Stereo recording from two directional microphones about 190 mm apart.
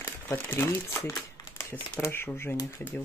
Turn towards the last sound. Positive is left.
turn(degrees=10)  # may be behind; listen again after turning